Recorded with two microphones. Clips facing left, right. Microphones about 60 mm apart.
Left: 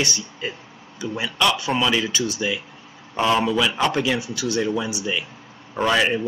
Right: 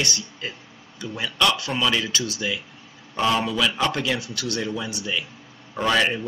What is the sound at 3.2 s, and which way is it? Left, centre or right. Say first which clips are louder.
Speech: left 2 dB; centre.